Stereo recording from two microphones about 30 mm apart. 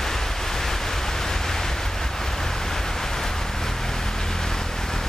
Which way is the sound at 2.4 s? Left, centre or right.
Centre.